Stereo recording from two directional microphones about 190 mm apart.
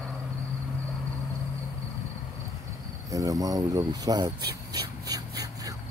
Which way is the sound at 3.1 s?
20° right (ahead or behind).